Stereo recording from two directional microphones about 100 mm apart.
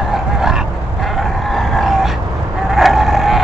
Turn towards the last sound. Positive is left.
turn(degrees=0)  # may be behind; listen again after turning